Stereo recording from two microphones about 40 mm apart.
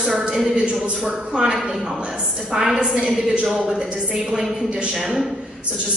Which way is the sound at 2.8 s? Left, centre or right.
Right.